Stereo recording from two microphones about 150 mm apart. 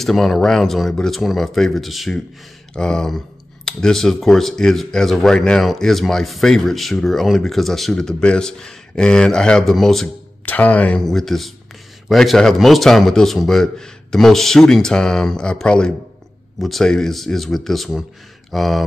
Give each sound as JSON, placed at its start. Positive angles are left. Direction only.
{"t": 0.0, "sound": "speech", "side_deg": 0}